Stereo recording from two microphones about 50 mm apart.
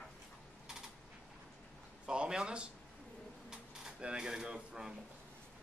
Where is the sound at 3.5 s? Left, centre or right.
Centre.